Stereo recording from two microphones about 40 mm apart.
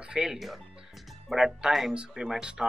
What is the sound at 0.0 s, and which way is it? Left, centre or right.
Music, right.